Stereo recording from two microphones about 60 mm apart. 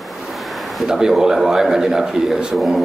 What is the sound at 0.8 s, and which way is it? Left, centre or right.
A man's voice, centre.